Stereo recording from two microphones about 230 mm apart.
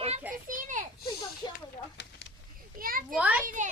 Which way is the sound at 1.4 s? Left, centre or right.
Centre.